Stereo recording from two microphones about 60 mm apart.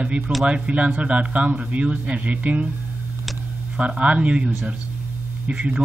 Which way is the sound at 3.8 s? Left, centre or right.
Right.